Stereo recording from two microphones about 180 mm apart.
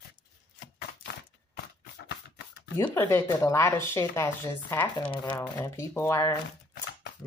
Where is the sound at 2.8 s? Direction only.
10° left (ahead or behind).